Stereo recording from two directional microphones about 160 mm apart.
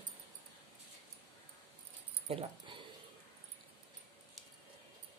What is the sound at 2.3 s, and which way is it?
Speech, 40° right (ahead or behind).